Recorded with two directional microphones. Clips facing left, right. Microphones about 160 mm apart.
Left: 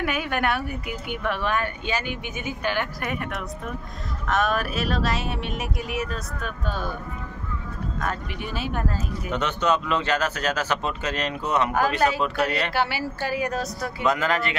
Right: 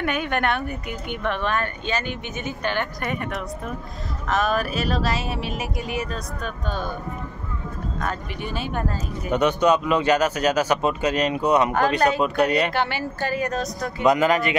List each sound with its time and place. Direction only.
0.0 s speech: 5° left (ahead or behind)
8.0 s speech: centre (ahead or behind)
9.3 s speech: 10° right (ahead or behind)
12.7 s speech: 10° left (ahead or behind)
14.0 s speech: 15° right (ahead or behind)